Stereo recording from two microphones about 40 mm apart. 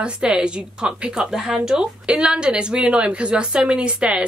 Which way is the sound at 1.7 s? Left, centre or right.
Right.